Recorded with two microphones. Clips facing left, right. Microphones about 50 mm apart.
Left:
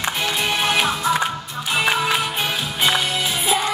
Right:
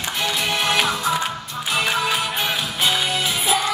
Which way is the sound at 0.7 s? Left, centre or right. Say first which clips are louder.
Right 1 dB; centre.